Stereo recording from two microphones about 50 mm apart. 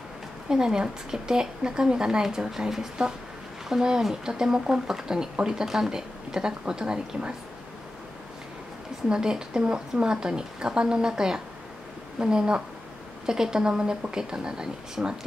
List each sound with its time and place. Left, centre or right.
0.5 s speech: centre
9.1 s speech: centre